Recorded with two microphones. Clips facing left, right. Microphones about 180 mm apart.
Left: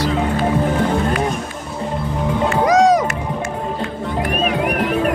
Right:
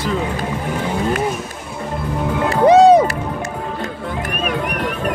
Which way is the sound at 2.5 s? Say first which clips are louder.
Right 5 dB; 30° right (ahead or behind).